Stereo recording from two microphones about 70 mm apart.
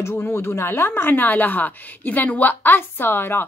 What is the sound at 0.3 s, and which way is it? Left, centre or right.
Speech, left.